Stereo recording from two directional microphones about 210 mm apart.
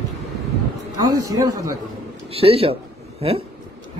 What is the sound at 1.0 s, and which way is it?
Speech, 15° right (ahead or behind).